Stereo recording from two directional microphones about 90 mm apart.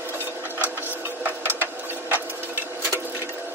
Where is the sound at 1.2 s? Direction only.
20° right (ahead or behind).